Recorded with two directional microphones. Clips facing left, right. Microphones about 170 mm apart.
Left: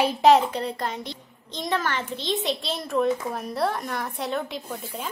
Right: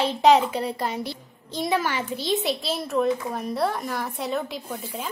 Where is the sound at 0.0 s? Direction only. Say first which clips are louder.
Even; 5° left (ahead or behind).